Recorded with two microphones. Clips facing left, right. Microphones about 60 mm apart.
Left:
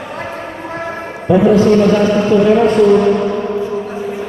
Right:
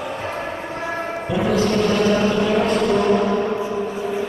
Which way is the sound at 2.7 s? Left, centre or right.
Centre.